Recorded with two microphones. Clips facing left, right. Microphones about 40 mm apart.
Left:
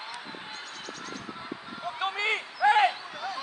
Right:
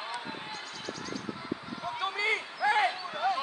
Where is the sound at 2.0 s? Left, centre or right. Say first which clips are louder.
Left 2 dB; left.